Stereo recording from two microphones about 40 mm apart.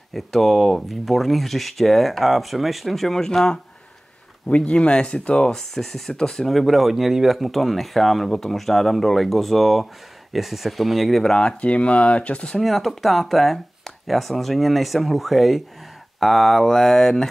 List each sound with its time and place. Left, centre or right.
0.1 s speech: centre
3.2 s speech: centre
4.5 s speech: left; by 11.2 s centre
11.2 s speech: left
12.5 s speech: centre